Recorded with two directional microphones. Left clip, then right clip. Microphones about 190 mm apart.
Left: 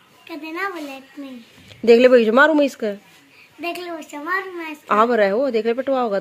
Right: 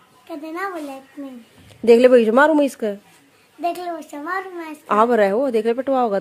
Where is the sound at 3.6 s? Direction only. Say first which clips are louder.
Right 3 dB; 25° right (ahead or behind).